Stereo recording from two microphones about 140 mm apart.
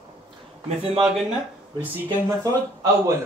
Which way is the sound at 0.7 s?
45° right (ahead or behind).